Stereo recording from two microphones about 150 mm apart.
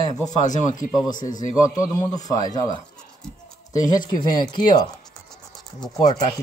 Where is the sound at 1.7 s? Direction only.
25° left (ahead or behind).